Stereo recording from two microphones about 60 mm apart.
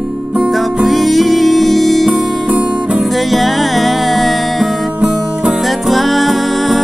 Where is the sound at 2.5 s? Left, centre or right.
Centre.